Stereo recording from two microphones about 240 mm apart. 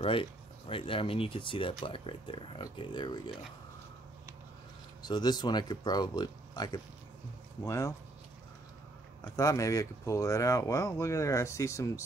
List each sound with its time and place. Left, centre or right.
0.0 s speech: left
5.0 s speech: centre
9.2 s speech: centre